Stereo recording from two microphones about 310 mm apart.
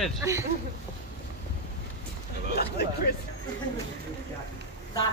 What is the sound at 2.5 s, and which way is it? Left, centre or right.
Speech, left.